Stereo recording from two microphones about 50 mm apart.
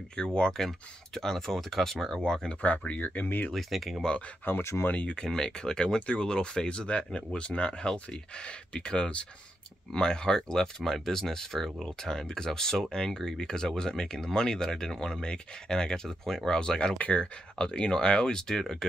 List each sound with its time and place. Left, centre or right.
0.1 s speech: centre
2.6 s speech: left
3.5 s speech: centre
4.5 s speech: left
4.9 s speech: left